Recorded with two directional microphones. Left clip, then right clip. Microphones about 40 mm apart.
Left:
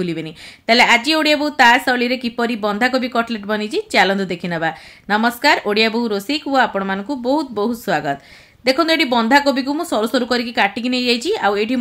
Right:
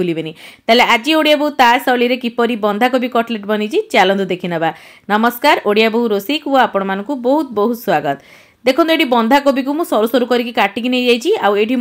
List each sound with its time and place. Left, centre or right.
0.2 s a woman's voice: right
6.8 s speech: right
7.1 s a woman's voice: right
8.7 s a woman's voice: right